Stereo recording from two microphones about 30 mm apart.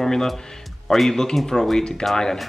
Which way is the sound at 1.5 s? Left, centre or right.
Centre.